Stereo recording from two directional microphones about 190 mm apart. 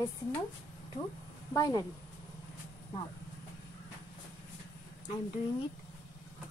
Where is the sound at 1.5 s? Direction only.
20° left (ahead or behind).